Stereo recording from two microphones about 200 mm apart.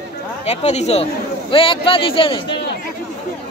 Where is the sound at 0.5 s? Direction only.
35° left (ahead or behind).